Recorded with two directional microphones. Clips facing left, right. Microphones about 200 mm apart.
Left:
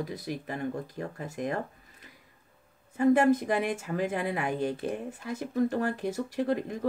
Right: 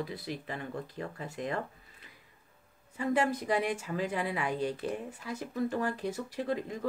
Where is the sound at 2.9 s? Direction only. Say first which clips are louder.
Left 8 dB; 50° left (ahead or behind).